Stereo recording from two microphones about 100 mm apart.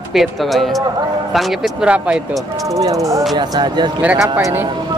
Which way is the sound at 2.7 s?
35° right (ahead or behind).